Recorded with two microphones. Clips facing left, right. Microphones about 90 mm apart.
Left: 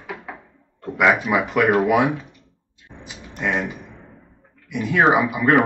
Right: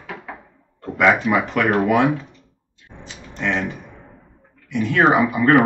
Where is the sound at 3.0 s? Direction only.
10° left (ahead or behind).